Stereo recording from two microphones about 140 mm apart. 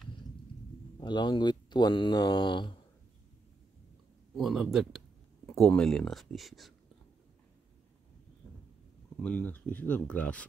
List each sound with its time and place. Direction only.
0.9 s speech: 30° left (ahead or behind)
4.4 s speech: centre (ahead or behind)
9.2 s speech: 10° left (ahead or behind)